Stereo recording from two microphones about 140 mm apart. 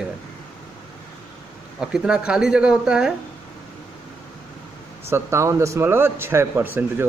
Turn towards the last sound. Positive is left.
turn(degrees=-15)  # may be behind; listen again after turning